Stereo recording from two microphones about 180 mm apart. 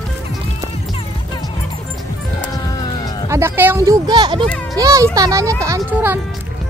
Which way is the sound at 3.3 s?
15° right (ahead or behind).